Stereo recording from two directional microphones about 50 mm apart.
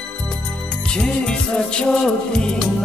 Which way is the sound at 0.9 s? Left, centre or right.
Centre.